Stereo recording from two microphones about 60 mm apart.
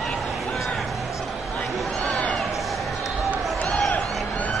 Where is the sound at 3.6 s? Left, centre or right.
Centre.